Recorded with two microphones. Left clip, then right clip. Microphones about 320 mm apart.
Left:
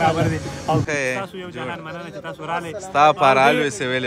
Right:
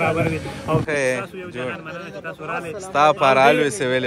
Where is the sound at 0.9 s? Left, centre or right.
Centre.